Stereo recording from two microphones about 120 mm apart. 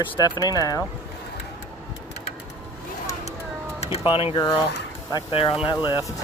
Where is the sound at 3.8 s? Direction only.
50° left (ahead or behind).